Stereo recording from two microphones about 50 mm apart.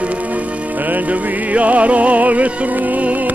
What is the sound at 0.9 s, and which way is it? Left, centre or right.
Music, right.